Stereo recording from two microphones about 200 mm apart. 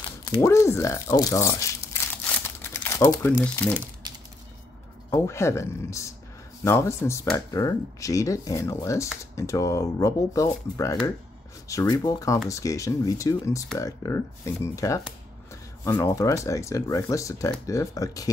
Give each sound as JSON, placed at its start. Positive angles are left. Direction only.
{"t": 0.2, "sound": "speech", "side_deg": 15}
{"t": 2.4, "sound": "crumpling", "side_deg": 10}
{"t": 4.0, "sound": "a sound", "side_deg": -20}
{"t": 5.1, "sound": "speech", "side_deg": 15}